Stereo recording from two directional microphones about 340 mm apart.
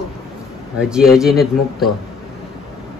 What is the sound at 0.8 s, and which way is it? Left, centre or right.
A woman's voice, centre.